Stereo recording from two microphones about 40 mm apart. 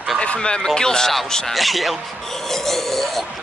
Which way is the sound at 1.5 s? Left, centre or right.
Centre.